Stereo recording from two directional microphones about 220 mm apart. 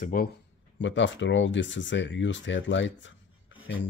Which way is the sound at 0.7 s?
55° left (ahead or behind).